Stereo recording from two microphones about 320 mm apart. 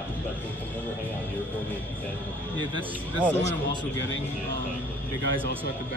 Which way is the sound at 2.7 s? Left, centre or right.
Centre.